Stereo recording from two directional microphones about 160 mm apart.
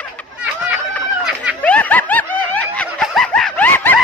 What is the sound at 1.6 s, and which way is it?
Snicker, 10° left (ahead or behind).